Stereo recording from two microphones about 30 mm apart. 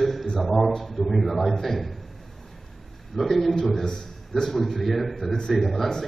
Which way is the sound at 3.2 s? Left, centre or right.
Centre.